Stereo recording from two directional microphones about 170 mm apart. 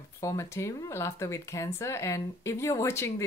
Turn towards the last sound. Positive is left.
turn(degrees=15)  # may be behind; listen again after turning